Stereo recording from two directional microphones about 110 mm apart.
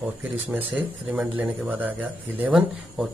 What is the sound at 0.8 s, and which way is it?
Speech, 10° right (ahead or behind).